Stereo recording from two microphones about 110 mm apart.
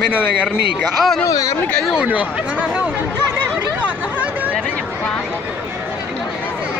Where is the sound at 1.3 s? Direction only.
30° left (ahead or behind).